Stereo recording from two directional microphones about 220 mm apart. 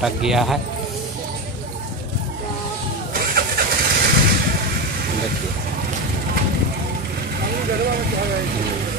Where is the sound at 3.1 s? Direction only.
45° right (ahead or behind).